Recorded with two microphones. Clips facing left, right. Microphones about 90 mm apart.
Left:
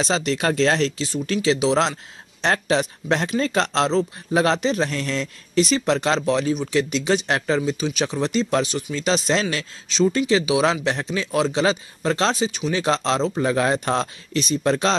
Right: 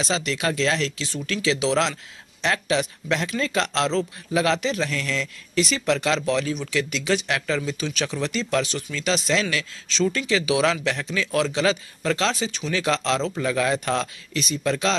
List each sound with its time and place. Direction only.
0.0 s speech: 35° left (ahead or behind)
1.6 s speech: 20° left (ahead or behind)
2.4 s speech: 35° left (ahead or behind)
9.8 s speech: 15° left (ahead or behind)
12.4 s speech: 15° left (ahead or behind)
12.7 s speech: 25° left (ahead or behind)